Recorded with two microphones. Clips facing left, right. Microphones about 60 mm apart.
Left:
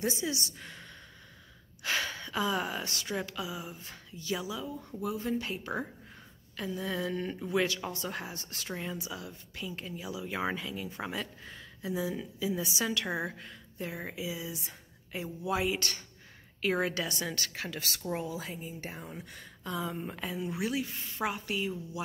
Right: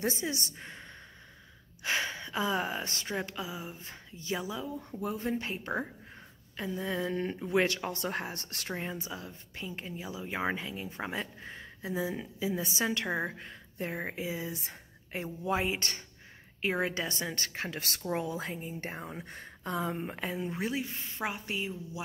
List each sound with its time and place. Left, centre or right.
0.0 s speech: right
5.0 s speech: right
5.3 s speech: right
6.8 s speech: right
7.5 s speech: right
8.7 s a woman's voice: right
15.5 s speech: right
18.9 s speech: right; by 22.0 s centre